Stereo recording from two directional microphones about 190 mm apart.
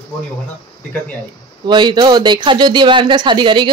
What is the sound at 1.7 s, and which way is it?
Speech, 25° right (ahead or behind).